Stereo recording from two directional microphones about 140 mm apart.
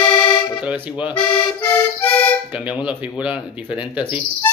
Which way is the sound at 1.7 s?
10° left (ahead or behind).